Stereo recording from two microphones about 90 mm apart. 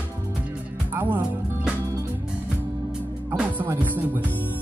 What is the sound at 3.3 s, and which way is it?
Music, 15° right (ahead or behind).